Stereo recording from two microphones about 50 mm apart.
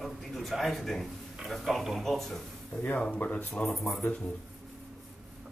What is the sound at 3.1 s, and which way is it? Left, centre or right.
Speech, left.